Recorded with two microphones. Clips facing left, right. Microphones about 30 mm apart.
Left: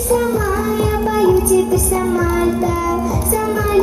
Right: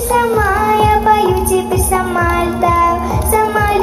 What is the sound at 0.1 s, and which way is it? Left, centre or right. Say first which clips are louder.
Music: right 4 dB; right.